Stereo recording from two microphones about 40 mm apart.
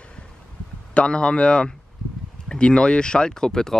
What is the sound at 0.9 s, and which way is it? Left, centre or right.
A man's voice, left.